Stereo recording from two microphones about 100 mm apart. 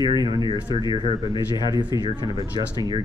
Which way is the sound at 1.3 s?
45° left (ahead or behind).